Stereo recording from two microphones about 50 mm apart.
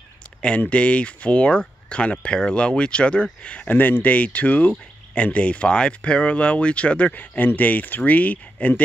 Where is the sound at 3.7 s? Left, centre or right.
Left.